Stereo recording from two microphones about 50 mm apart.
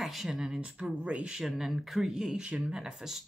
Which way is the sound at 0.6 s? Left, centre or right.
Right.